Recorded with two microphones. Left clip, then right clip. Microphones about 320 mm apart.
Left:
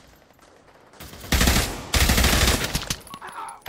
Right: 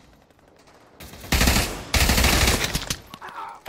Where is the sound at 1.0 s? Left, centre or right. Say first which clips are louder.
Even; centre.